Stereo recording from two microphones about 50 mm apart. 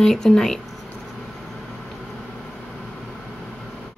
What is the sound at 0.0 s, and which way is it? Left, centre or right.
Speech, centre.